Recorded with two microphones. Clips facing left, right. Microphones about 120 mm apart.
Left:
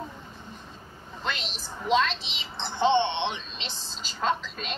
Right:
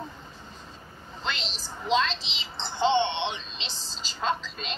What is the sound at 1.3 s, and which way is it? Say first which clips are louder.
A woman's voice: left 1 dB; 50° left (ahead or behind).